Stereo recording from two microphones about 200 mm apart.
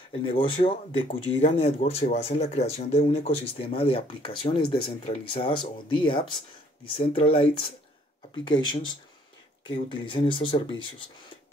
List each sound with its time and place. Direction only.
0.1 s speech: 25° left (ahead or behind)